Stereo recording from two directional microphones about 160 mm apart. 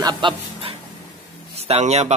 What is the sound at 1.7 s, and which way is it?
Speech, 40° right (ahead or behind).